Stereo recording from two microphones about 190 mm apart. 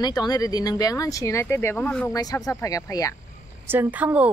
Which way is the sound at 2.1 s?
20° left (ahead or behind).